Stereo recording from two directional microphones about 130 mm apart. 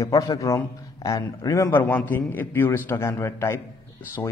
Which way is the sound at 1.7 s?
15° left (ahead or behind).